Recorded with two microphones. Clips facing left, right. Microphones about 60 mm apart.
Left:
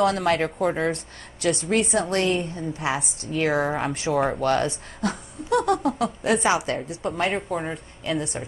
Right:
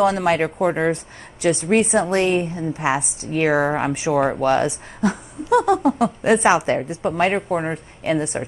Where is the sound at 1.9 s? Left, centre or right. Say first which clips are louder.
Right 5 dB; right.